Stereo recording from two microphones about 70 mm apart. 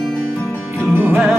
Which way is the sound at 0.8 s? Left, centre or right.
Right.